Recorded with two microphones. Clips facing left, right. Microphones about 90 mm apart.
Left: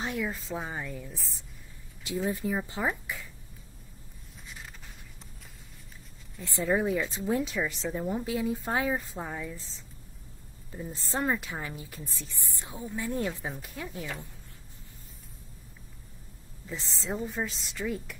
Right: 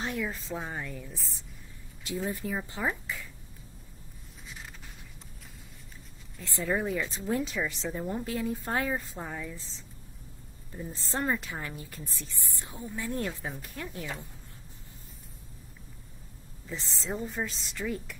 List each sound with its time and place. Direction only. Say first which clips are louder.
0.1 s a woman's voice: left 1 dB; 5° left (ahead or behind)
2.3 s speech: left 3 dB; 10° left (ahead or behind)
3.1 s a sound: even; 15° left (ahead or behind)
6.4 s speech: left 3 dB; 20° left (ahead or behind)
6.7 s a woman's voice: left 3 dB; 5° left (ahead or behind)
10.7 s speech: left 1 dB; 15° left (ahead or behind)
11.1 s a woman's voice: left 1 dB; 5° left (ahead or behind)
16.6 s a woman's voice: left 1 dB; centre (ahead or behind)